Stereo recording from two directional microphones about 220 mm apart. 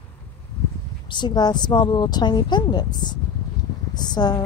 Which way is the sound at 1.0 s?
20° left (ahead or behind).